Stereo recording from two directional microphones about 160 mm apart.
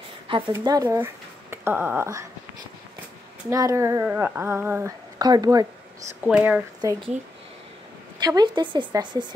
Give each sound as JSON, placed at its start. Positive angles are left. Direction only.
{"t": 0.5, "sound": "speech", "side_deg": -20}
{"t": 3.4, "sound": "speech", "side_deg": -20}
{"t": 5.2, "sound": "speech", "side_deg": -25}
{"t": 6.2, "sound": "speech", "side_deg": -5}
{"t": 6.8, "sound": "speech", "side_deg": -25}
{"t": 8.2, "sound": "speech", "side_deg": -25}